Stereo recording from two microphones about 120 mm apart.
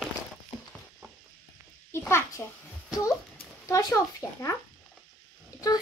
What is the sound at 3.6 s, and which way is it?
Speech, 30° left (ahead or behind).